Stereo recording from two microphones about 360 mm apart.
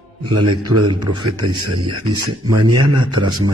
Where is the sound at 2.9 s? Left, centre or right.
Centre.